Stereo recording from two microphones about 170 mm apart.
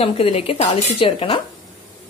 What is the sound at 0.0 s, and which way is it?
Speech, 35° left (ahead or behind).